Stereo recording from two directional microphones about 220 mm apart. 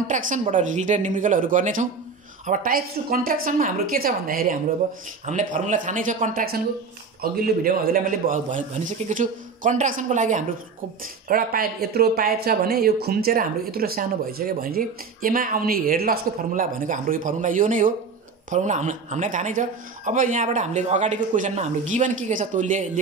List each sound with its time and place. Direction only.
0.0 s speech: 35° right (ahead or behind)